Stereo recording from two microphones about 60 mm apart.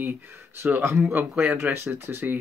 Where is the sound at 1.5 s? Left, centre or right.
Right.